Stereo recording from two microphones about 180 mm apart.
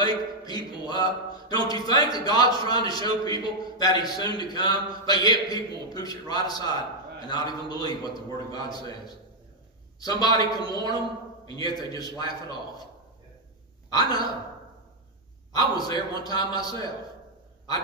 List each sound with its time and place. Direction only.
0.0 s speech: 20° left (ahead or behind)
15.5 s speech: 20° left (ahead or behind)